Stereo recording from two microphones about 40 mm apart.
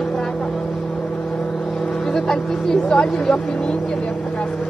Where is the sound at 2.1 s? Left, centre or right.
Centre.